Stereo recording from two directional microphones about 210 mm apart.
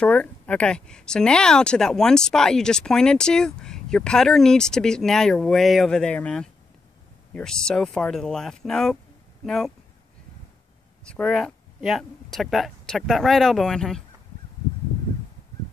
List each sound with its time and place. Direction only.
0.0 s a woman's voice: 5° left (ahead or behind)
11.1 s a woman's voice: 5° left (ahead or behind)